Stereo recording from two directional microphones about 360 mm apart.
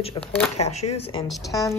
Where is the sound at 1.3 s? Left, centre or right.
Centre.